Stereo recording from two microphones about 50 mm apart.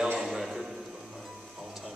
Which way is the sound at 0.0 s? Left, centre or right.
Centre.